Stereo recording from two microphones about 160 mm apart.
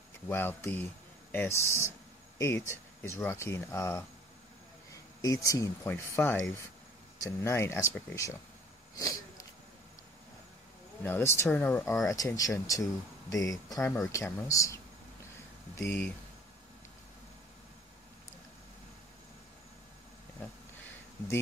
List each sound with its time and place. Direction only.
0.3 s speech: 15° left (ahead or behind)
5.2 s speech: 20° left (ahead or behind)
8.9 s wheeze: 20° left (ahead or behind)
11.0 s speech: 15° left (ahead or behind)